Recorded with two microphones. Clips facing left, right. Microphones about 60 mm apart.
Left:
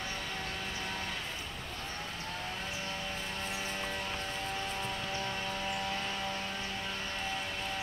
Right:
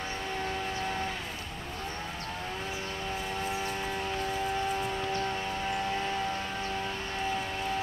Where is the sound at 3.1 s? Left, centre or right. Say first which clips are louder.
Right 5 dB; centre.